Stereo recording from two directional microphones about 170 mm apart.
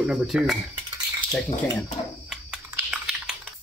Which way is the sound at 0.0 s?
5° right (ahead or behind).